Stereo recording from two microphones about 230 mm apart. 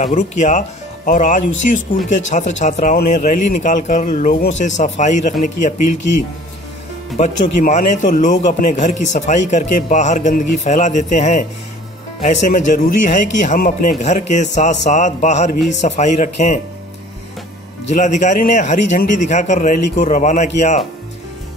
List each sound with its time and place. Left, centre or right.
0.0 s a man's voice: left
7.6 s a man's voice: left
17.8 s a man's voice: left